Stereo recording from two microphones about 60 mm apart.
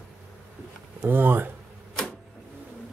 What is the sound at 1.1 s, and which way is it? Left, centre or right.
Speech, right.